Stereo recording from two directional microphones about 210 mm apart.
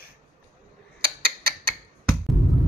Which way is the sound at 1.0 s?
45° right (ahead or behind).